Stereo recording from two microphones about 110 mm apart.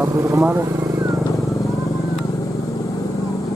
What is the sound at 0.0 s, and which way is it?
Speech, 25° right (ahead or behind).